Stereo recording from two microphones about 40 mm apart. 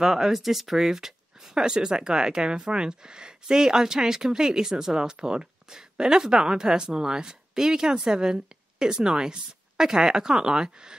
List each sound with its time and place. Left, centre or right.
0.0 s speech: centre